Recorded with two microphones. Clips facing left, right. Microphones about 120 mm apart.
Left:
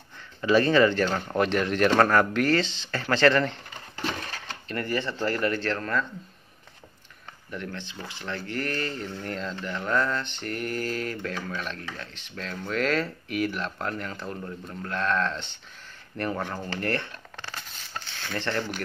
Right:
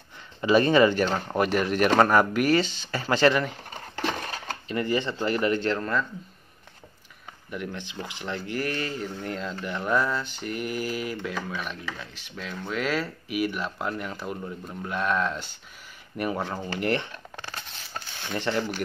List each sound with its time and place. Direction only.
0.4 s speech: 15° right (ahead or behind)
1.0 s speech: 5° right (ahead or behind)
3.7 s a sound: 40° right (ahead or behind)
4.6 s speech: 15° right (ahead or behind)
7.5 s speech: 10° right (ahead or behind)
17.9 s a sound: 15° right (ahead or behind)